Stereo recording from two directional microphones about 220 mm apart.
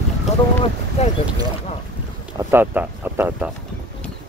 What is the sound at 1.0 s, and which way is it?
Speech, 30° left (ahead or behind).